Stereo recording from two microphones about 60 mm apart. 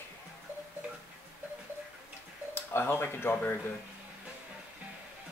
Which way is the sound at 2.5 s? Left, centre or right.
Left.